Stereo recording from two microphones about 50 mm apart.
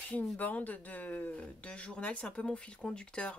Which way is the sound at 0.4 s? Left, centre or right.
Left.